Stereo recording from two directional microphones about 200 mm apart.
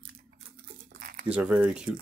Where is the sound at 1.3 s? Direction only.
5° right (ahead or behind).